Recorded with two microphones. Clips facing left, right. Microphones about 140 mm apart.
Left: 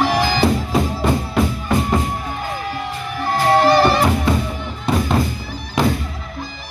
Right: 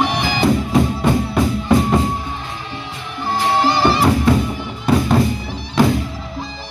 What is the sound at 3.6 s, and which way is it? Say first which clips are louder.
Music: left 1 dB; 25° right (ahead or behind).